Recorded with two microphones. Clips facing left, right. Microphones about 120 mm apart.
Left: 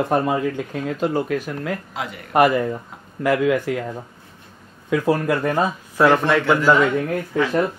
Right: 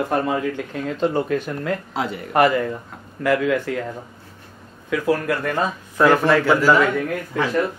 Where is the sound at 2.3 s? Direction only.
15° left (ahead or behind).